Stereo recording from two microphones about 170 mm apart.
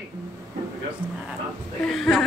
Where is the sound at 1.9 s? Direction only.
Centre (ahead or behind).